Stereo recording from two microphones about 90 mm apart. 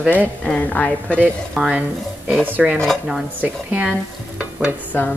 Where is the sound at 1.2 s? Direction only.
15° right (ahead or behind).